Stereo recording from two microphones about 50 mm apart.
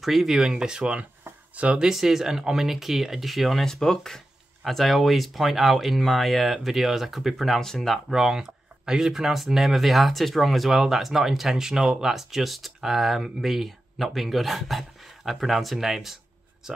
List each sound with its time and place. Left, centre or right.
0.0 s speech: centre; by 1.8 s right
1.8 s speech: centre
8.1 s speech: centre